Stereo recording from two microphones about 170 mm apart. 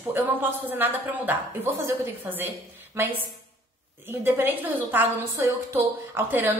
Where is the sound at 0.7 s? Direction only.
10° right (ahead or behind).